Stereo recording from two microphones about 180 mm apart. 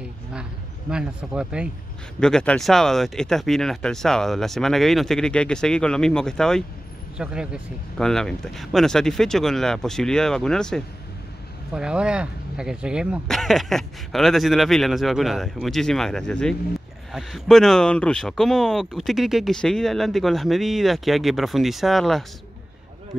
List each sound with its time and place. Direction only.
0.3 s speech: 5° right (ahead or behind)